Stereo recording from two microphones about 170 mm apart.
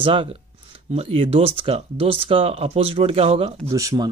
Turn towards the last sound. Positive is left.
turn(degrees=-20)  # may be behind; listen again after turning